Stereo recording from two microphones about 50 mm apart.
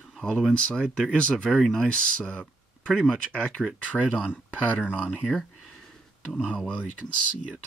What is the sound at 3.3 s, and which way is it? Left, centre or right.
Speech, centre.